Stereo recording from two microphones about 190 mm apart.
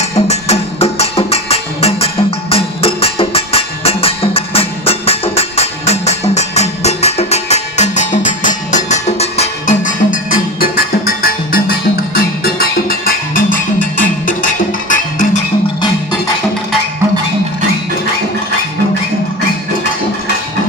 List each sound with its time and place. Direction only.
0.0 s music: 35° left (ahead or behind)